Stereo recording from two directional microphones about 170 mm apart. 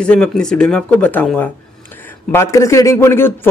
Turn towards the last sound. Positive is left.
turn(degrees=15)  # may be behind; listen again after turning